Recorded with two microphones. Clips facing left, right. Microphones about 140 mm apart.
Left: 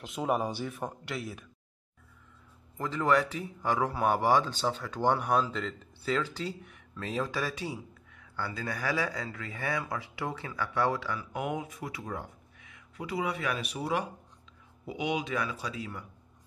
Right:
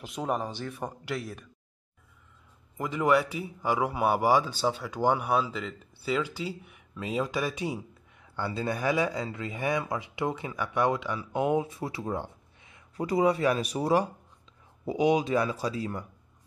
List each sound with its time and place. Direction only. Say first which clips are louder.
0.0 s speech: left 1 dB; centre (ahead or behind)
0.7 s speech: right 2 dB; centre (ahead or behind)
2.8 s a man's voice: right 2 dB; 15° right (ahead or behind); by 16.1 s 40° right (ahead or behind)